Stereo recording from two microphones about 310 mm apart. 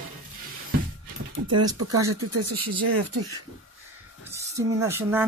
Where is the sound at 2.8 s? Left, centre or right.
Right.